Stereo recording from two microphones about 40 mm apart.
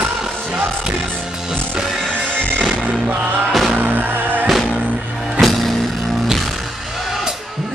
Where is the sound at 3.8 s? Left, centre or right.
Right.